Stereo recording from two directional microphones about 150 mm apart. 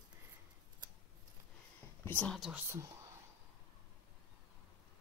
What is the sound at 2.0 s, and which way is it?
Speech, 10° left (ahead or behind).